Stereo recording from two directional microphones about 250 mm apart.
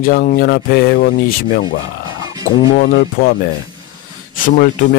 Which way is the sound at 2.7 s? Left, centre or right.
Left.